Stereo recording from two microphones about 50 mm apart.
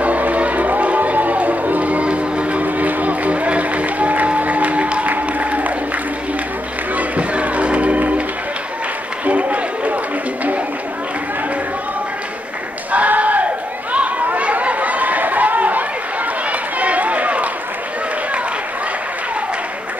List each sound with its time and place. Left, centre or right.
0.0 s crowd: right
7.0 s music: right
9.2 s a sound: right
12.9 s a sound: right
13.9 s chatter: right
16.7 s run: right